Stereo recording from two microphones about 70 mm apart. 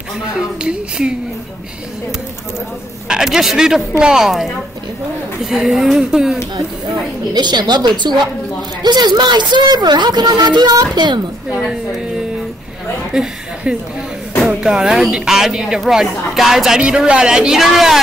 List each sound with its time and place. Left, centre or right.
0.6 s speech: centre
3.1 s speech: centre
7.3 s speech: right
13.1 s chuckle: centre
14.6 s speech: centre